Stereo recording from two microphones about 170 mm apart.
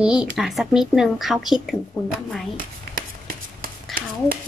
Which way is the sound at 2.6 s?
55° right (ahead or behind).